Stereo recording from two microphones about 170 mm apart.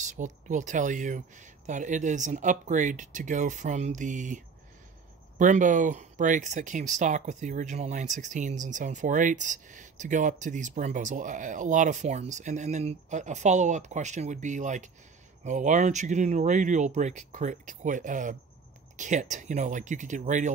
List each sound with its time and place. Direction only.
0.0 s speech: 45° right (ahead or behind)
5.4 s speech: 50° right (ahead or behind)